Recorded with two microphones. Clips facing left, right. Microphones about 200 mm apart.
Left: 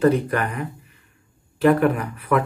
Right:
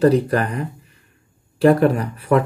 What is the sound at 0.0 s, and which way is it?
Speech, 35° right (ahead or behind).